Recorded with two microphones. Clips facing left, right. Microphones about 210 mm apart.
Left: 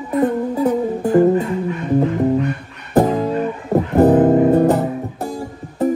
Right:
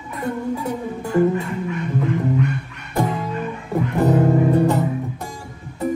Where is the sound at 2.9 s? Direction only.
45° left (ahead or behind).